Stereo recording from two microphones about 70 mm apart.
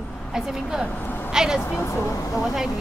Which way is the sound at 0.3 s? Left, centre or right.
Centre.